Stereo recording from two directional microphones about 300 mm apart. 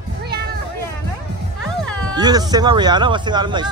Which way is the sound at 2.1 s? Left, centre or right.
Centre.